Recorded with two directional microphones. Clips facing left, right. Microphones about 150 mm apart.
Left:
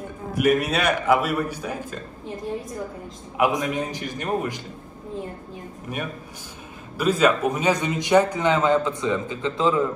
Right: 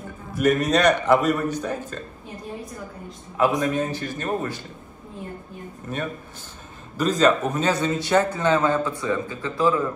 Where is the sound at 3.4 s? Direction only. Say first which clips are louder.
Right 1 dB; 15° left (ahead or behind).